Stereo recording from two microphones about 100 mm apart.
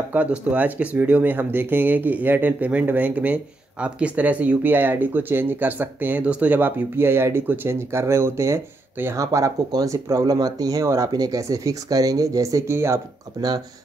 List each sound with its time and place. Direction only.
0.1 s speech: 15° right (ahead or behind)